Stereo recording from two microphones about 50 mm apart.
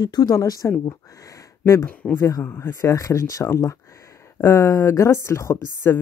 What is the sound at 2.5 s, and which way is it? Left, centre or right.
Speech, left.